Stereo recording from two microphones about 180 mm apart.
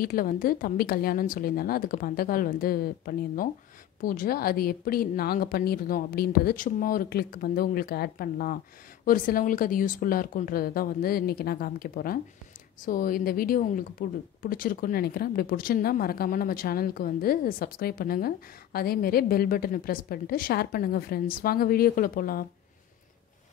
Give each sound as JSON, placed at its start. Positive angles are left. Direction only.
{"t": 0.0, "sound": "a woman's voice", "side_deg": 55}